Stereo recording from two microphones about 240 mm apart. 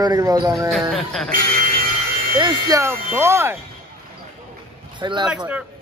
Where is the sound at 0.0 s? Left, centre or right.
Centre.